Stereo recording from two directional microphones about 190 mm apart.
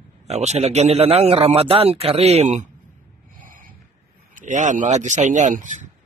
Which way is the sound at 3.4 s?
45° right (ahead or behind).